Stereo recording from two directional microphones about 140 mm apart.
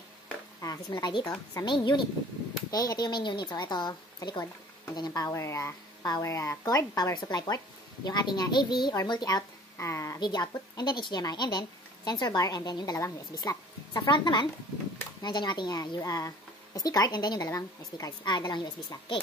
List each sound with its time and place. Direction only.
0.6 s a woman's voice: 25° left (ahead or behind)